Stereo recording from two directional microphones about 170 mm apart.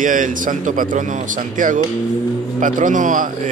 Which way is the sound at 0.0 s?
50° right (ahead or behind).